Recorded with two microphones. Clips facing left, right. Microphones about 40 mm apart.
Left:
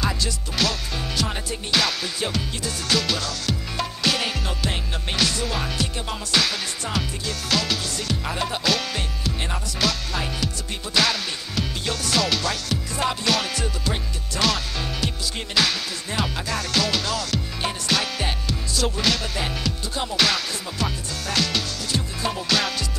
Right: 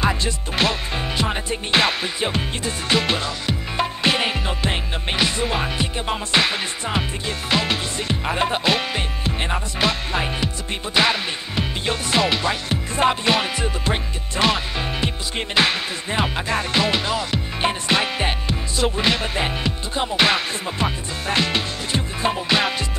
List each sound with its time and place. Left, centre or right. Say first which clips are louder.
0.0 s music: right 4 dB; right